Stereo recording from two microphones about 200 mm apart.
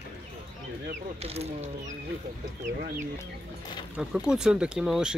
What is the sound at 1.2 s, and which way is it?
Speech, 30° right (ahead or behind).